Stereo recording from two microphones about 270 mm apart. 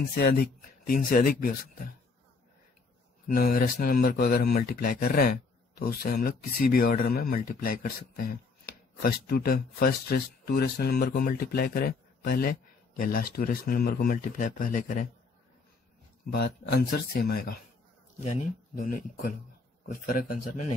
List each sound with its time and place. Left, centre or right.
0.1 s speech: left
3.3 s speech: left
16.3 s speech: left